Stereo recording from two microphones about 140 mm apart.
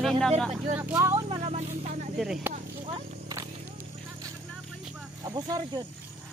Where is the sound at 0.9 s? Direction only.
25° right (ahead or behind).